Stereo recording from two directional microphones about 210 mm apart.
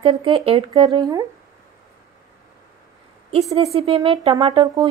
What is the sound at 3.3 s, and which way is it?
Speech, 30° right (ahead or behind).